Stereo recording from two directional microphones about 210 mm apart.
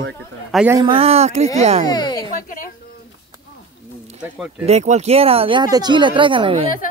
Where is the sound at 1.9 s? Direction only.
20° left (ahead or behind).